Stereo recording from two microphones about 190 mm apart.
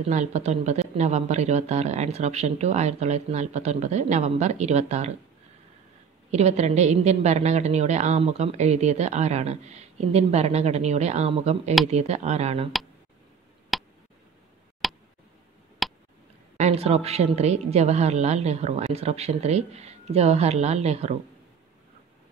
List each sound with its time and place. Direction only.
0.0 s a woman's voice: 35° right (ahead or behind)
6.3 s a woman's voice: 35° right (ahead or behind)
13.7 s a sound: centre (ahead or behind)
15.8 s tick: centre (ahead or behind)
16.5 s a woman's voice: 35° right (ahead or behind)